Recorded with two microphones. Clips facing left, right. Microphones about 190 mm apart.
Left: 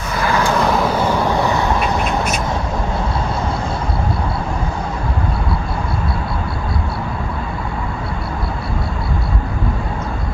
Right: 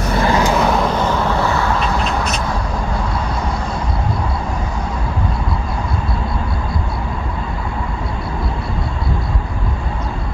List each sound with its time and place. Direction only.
0.2 s vehicle: 20° right (ahead or behind)
0.6 s duck: centre (ahead or behind)